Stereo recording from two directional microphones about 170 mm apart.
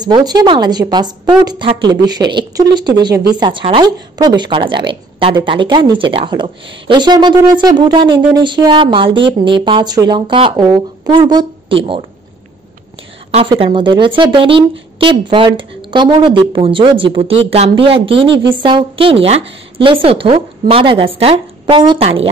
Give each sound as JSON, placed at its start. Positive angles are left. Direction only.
{"t": 0.0, "sound": "a woman's voice", "side_deg": -25}
{"t": 13.3, "sound": "speech", "side_deg": -35}
{"t": 18.3, "sound": "a woman's voice", "side_deg": -90}
{"t": 18.6, "sound": "speech", "side_deg": -30}